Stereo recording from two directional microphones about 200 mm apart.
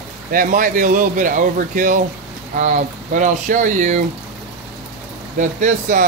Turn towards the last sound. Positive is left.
turn(degrees=-40)  # may be behind; listen again after turning